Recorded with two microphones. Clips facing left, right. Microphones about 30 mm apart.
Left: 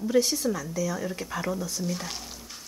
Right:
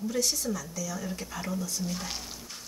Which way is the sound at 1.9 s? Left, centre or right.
Centre.